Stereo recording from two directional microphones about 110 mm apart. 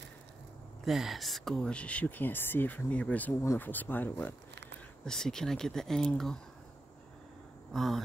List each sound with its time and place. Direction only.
0.8 s speech: centre (ahead or behind); by 4.4 s 15° left (ahead or behind)
5.0 s speech: 5° left (ahead or behind)
7.7 s a sound: centre (ahead or behind)